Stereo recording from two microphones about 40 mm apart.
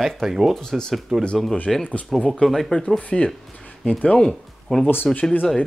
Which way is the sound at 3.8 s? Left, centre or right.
Centre.